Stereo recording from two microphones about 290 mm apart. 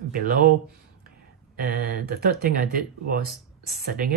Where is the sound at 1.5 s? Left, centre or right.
Right.